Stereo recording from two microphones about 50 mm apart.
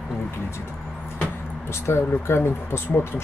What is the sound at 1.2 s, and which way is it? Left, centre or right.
Vehicle, left.